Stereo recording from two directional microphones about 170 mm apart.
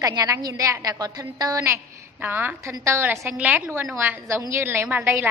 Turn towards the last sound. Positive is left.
turn(degrees=-10)  # may be behind; listen again after turning